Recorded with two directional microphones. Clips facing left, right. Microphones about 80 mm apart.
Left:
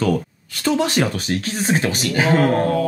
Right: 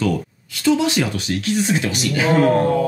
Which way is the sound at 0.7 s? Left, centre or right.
Left.